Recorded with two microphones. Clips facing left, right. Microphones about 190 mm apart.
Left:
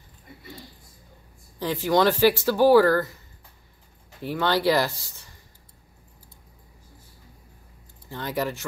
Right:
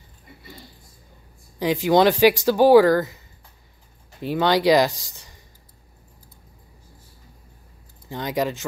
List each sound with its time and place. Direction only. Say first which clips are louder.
1.6 s speech: right 4 dB; 15° right (ahead or behind)
4.2 s speech: right 4 dB; 15° right (ahead or behind)
8.1 s speech: right 4 dB; 15° right (ahead or behind)